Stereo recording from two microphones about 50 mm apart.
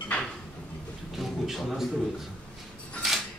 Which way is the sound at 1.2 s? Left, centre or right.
Centre.